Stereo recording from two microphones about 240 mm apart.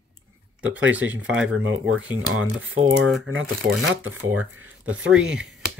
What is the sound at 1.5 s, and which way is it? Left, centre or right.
Speech, right.